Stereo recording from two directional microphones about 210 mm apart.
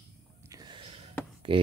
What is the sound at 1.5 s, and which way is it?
Speech, 25° right (ahead or behind).